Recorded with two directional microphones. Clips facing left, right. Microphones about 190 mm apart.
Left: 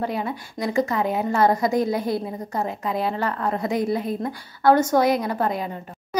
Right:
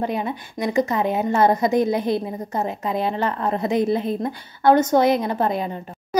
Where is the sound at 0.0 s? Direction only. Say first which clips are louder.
Right 2 dB; 20° right (ahead or behind).